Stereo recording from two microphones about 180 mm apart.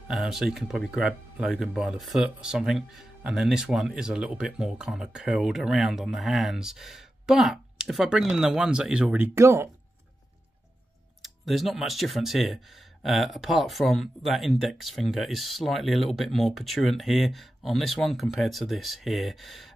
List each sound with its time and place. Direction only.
0.1 s speech: centre (ahead or behind)
11.2 s speech: centre (ahead or behind)